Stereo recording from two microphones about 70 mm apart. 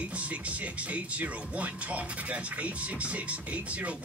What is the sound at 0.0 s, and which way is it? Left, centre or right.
Speech, centre.